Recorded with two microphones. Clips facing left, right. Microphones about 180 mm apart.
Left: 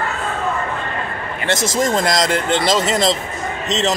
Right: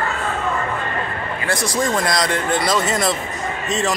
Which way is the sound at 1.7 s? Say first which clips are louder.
Left 2 dB; 20° left (ahead or behind).